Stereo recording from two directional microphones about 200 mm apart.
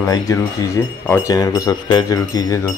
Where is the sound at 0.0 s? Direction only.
15° left (ahead or behind).